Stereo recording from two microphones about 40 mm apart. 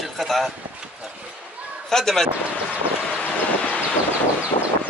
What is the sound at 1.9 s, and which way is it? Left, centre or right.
Speech, centre.